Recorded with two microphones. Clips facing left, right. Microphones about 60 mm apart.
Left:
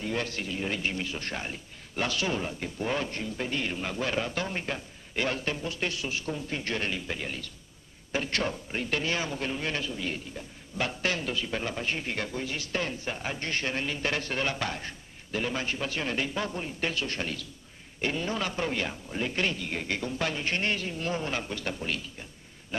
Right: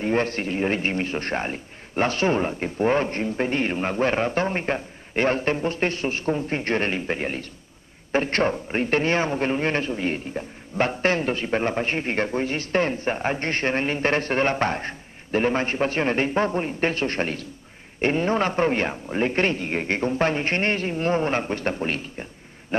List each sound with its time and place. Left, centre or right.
0.0 s a man's voice: right